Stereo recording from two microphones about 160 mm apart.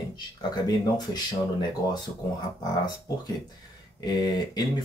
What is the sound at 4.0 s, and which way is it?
Speech, 25° left (ahead or behind).